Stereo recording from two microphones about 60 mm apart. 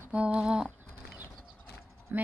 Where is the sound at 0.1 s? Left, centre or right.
Centre.